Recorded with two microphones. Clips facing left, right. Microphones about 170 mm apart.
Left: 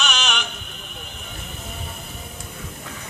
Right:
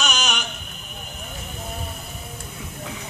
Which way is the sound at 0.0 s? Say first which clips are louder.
Even; 40° right (ahead or behind).